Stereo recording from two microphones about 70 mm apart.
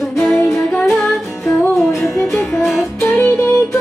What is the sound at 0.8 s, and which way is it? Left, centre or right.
Music, centre.